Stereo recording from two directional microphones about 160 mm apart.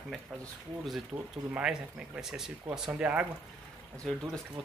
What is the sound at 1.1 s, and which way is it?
Speech, 15° right (ahead or behind).